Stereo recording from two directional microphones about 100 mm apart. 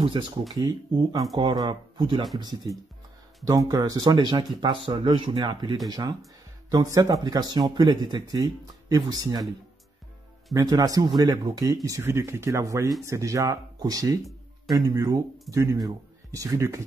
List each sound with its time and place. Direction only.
0.2 s speech: 55° right (ahead or behind)
0.6 s speech: 40° right (ahead or behind)
10.5 s speech: 40° right (ahead or behind)